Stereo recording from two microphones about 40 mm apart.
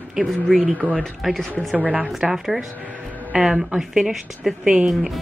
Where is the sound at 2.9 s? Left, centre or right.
Left.